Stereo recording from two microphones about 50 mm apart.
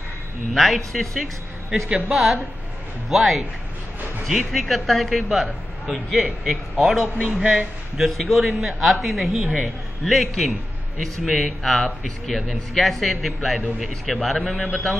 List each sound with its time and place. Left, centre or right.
0.6 s a man's voice: centre
7.2 s a man's voice: right
8.2 s a man's voice: centre